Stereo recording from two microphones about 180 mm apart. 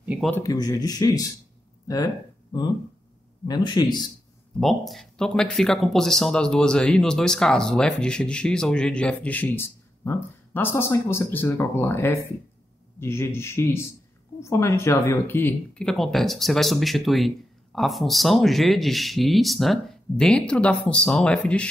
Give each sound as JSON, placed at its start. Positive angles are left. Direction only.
{"t": 0.0, "sound": "speech", "side_deg": -10}
{"t": 0.3, "sound": "speech", "side_deg": 20}
{"t": 2.5, "sound": "speech", "side_deg": 25}
{"t": 4.6, "sound": "speech", "side_deg": 0}